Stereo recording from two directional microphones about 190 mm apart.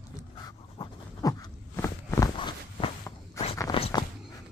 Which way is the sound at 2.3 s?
25° left (ahead or behind).